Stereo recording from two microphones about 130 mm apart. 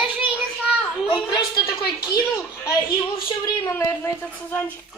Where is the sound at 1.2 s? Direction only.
35° left (ahead or behind).